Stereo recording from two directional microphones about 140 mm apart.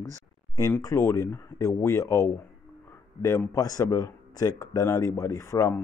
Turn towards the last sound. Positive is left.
turn(degrees=20)  # may be behind; listen again after turning